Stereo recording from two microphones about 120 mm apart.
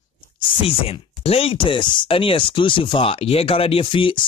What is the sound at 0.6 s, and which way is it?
Speech, 55° left (ahead or behind).